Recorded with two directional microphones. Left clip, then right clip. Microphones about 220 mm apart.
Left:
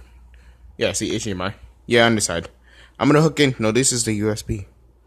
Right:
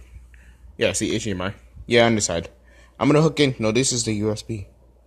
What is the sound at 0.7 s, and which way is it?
Speech, 10° left (ahead or behind).